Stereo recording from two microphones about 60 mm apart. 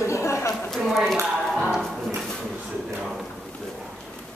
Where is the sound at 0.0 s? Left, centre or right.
Left.